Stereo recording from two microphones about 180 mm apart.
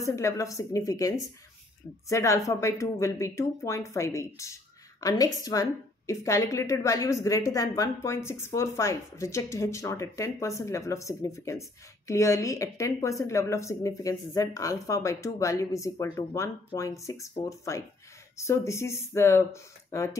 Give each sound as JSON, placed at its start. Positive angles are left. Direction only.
{"t": 0.0, "sound": "a woman's voice", "side_deg": 15}